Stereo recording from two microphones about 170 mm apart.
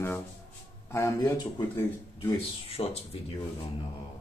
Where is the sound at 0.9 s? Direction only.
20° left (ahead or behind).